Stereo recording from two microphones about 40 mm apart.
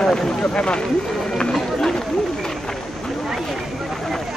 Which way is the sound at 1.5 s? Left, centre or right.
Centre.